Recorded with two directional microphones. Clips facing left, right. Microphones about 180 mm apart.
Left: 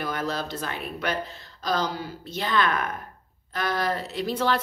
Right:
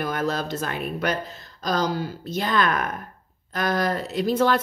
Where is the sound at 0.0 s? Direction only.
45° right (ahead or behind).